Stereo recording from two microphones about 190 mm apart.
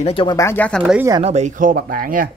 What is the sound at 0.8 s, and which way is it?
Speech, 5° right (ahead or behind).